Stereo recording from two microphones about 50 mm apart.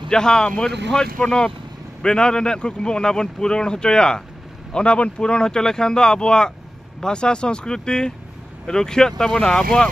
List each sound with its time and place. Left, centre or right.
0.1 s speech: centre